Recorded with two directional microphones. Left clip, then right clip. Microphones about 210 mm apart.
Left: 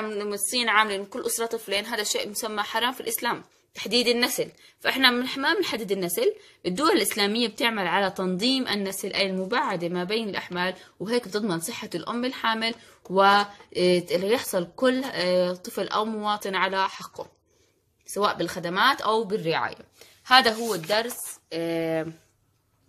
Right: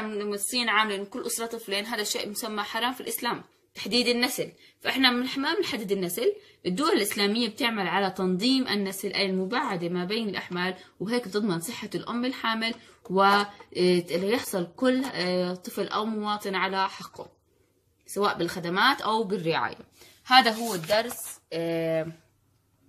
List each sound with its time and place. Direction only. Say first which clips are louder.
0.2 s a woman's voice: left 1 dB; 30° left (ahead or behind)
18.1 s speech: left 1 dB; 25° left (ahead or behind)